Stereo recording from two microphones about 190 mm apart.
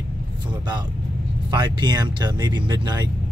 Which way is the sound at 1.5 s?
25° right (ahead or behind).